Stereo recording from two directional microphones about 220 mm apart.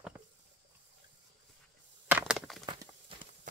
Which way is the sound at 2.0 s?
5° right (ahead or behind).